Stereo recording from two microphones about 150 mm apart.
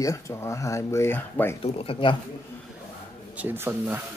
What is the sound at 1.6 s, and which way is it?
Speech, 40° left (ahead or behind).